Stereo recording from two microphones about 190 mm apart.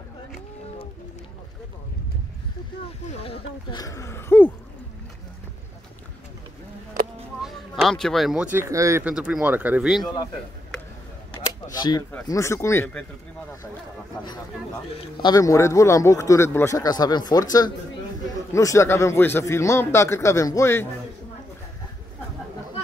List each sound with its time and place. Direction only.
3.1 s speech: 30° left (ahead or behind)
3.8 s speech: 15° left (ahead or behind)
7.4 s speech: centre (ahead or behind)
9.1 s speech: 5° right (ahead or behind)
11.7 s a sound: 20° left (ahead or behind)
12.3 s speech: 15° left (ahead or behind)
15.0 s speech: 25° left (ahead or behind)